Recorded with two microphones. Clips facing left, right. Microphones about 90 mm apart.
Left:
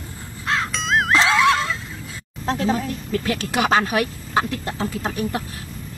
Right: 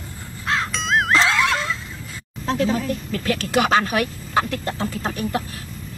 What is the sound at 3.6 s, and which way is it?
Speech, 5° left (ahead or behind).